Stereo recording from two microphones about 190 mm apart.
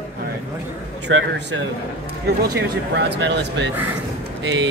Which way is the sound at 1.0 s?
65° right (ahead or behind).